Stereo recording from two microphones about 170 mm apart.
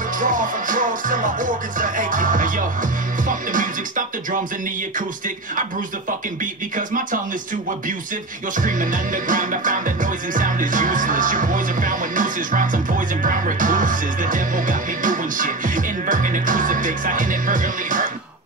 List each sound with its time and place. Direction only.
0.2 s music: 50° right (ahead or behind)
8.5 s music: 50° right (ahead or behind)